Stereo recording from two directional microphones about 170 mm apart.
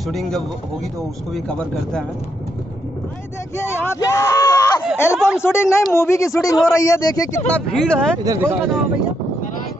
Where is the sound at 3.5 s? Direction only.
15° left (ahead or behind).